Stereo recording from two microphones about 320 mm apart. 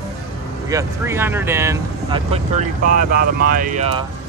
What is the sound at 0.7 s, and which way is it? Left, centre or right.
Speech, centre.